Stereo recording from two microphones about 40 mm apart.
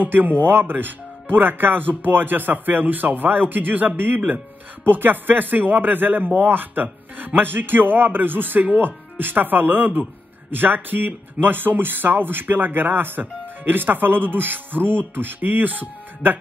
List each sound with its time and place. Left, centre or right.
0.0 s speech: right